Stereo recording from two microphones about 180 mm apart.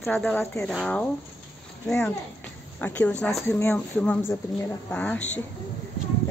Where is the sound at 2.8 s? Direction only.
10° left (ahead or behind).